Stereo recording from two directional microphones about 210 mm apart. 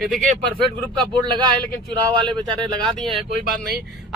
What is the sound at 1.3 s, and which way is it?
Speech, 20° right (ahead or behind).